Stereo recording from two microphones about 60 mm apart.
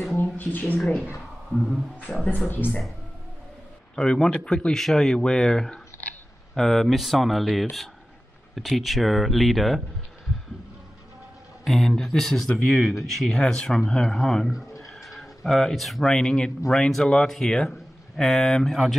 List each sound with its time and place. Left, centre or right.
0.2 s a sound: left
1.5 s speech: centre
2.0 s speech: left
3.9 s speech: centre
11.6 s speech: centre